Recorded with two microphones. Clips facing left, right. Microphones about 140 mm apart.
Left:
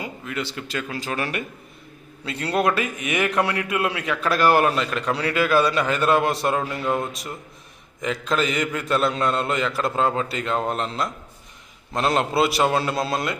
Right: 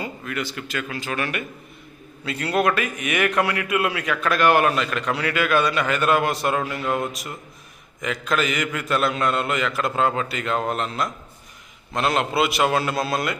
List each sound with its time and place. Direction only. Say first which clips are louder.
0.0 s a man's voice: right 1 dB; 20° left (ahead or behind)
8.0 s a man's voice: even; 30° left (ahead or behind)